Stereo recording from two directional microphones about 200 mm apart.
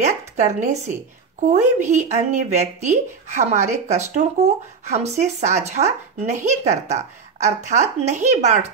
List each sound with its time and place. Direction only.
0.0 s a woman's voice: 35° right (ahead or behind)